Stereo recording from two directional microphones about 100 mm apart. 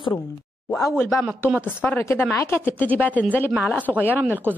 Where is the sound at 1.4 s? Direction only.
15° right (ahead or behind).